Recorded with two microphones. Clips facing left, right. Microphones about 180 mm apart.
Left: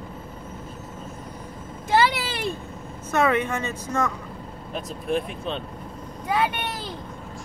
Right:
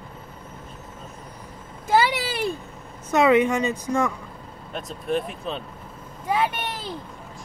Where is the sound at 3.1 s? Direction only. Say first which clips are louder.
Right 4 dB; 15° right (ahead or behind).